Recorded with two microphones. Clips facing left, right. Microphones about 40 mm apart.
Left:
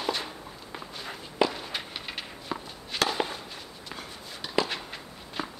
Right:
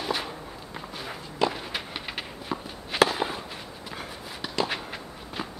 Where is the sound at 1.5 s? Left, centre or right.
Centre.